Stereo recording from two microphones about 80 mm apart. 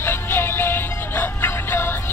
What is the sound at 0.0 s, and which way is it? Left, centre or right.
Music, left.